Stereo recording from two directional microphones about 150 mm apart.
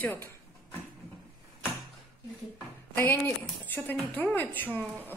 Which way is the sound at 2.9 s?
10° left (ahead or behind).